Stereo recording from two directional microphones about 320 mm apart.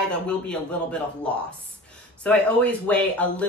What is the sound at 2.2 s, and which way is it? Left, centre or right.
Speech, centre.